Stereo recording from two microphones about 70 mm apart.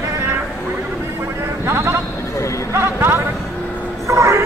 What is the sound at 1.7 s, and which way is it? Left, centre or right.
Sheep, right.